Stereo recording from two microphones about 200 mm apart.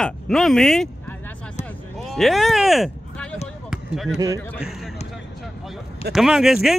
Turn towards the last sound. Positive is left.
turn(degrees=0)  # may be behind; listen again after turning